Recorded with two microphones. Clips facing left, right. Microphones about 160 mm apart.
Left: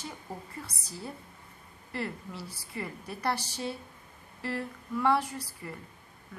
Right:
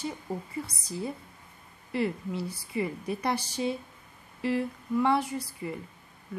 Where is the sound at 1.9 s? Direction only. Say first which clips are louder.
Right 7 dB; 10° right (ahead or behind).